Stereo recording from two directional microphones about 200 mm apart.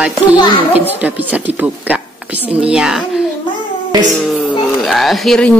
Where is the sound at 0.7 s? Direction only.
10° right (ahead or behind).